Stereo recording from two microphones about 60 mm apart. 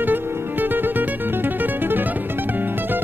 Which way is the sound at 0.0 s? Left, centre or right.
Right.